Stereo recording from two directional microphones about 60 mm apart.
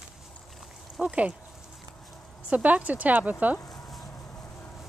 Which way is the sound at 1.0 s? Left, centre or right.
Right.